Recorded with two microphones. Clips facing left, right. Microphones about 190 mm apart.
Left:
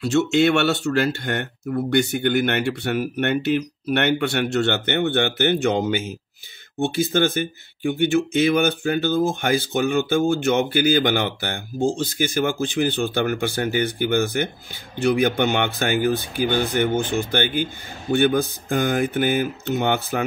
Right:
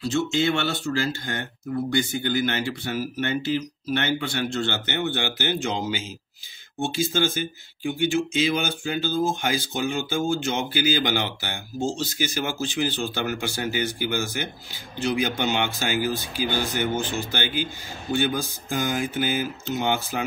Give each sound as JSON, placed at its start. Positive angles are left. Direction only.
{"t": 0.0, "sound": "speech", "side_deg": 70}